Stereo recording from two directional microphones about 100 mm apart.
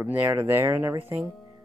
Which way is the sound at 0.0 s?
15° right (ahead or behind).